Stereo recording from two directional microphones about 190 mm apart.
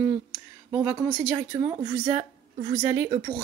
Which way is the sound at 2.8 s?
15° right (ahead or behind).